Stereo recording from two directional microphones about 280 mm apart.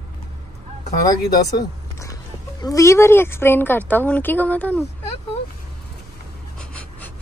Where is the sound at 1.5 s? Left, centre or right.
Centre.